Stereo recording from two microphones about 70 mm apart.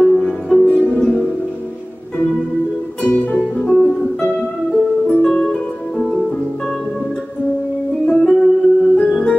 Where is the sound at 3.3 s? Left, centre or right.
Centre.